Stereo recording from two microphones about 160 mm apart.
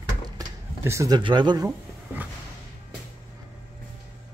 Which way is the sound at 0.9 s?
20° right (ahead or behind).